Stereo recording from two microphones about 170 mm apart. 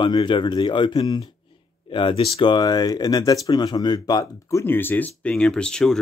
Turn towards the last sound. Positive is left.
turn(degrees=5)  # may be behind; listen again after turning